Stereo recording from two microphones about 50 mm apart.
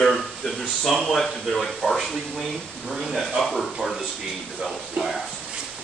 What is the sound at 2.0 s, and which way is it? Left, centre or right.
Speech, centre.